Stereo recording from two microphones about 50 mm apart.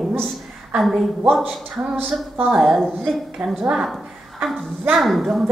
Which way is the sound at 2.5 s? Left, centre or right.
Centre.